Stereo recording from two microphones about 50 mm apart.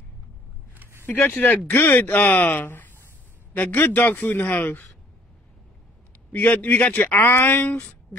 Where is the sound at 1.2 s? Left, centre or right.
Left.